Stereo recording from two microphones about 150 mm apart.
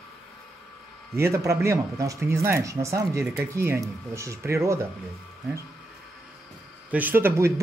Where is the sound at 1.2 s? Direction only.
20° right (ahead or behind).